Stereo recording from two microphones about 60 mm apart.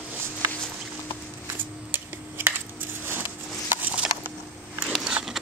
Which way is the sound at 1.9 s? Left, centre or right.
Right.